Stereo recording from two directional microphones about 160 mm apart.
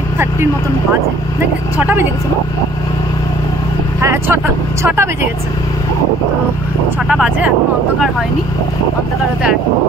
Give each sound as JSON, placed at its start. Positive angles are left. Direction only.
{"t": 1.8, "sound": "speech", "side_deg": -10}
{"t": 4.0, "sound": "speech", "side_deg": -15}
{"t": 7.1, "sound": "speech", "side_deg": -5}